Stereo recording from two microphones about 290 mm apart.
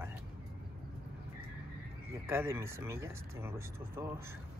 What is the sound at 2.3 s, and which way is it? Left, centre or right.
Speech, centre.